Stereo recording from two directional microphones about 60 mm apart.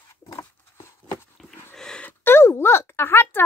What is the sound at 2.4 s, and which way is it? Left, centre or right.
Speech, left.